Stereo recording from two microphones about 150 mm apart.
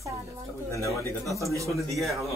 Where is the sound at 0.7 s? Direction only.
20° left (ahead or behind).